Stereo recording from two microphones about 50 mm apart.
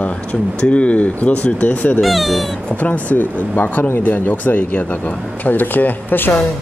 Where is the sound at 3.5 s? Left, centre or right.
Left.